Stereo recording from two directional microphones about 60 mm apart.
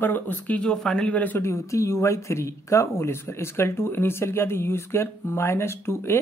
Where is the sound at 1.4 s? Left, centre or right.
Left.